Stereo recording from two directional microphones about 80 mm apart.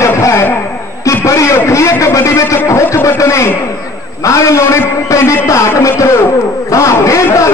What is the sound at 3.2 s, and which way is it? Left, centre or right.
A man's voice, left.